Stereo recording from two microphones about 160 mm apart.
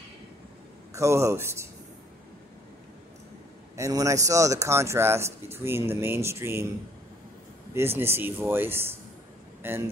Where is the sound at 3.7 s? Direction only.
20° right (ahead or behind).